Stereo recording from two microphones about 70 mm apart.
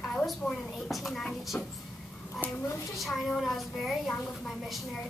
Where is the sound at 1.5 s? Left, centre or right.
Left.